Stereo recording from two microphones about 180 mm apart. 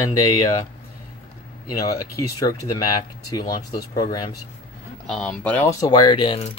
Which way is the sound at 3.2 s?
20° left (ahead or behind).